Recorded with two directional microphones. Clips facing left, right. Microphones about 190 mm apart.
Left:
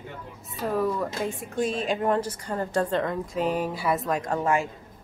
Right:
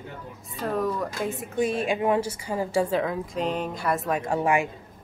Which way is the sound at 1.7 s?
55° right (ahead or behind).